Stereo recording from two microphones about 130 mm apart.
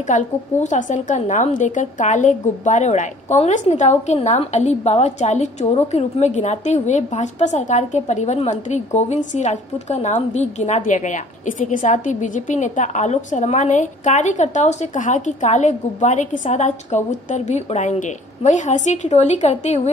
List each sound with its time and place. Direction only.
0.0 s a woman's voice: 70° left (ahead or behind)